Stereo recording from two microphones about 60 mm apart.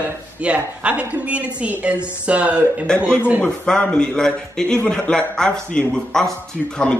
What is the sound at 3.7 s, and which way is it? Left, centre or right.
A man's voice, centre.